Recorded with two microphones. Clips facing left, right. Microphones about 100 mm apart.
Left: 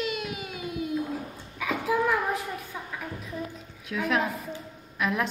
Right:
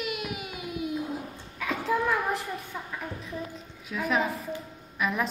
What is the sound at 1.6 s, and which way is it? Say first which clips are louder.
Child singing: left 1 dB; 5° left (ahead or behind).